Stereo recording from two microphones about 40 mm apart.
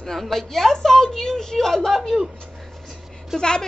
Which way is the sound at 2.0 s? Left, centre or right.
Centre.